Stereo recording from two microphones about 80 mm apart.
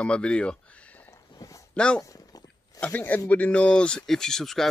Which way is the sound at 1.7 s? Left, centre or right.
Centre.